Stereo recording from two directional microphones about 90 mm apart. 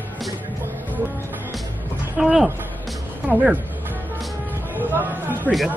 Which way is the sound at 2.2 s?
5° right (ahead or behind).